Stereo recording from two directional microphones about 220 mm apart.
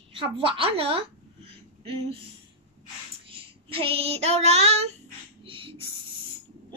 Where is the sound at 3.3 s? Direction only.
25° right (ahead or behind).